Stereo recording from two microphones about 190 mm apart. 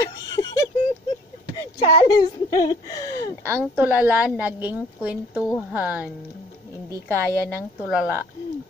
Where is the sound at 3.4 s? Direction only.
10° right (ahead or behind).